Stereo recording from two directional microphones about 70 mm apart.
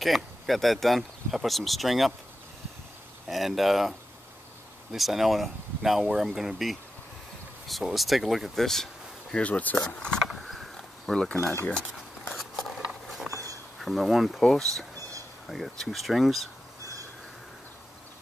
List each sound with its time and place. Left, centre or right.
0.0 s speech: centre
3.3 s speech: centre
4.9 s speech: centre
9.3 s speech: centre
10.2 s mechanisms: centre
11.1 s speech: centre
12.4 s scissors: centre
13.3 s a sound: right
13.7 s speech: centre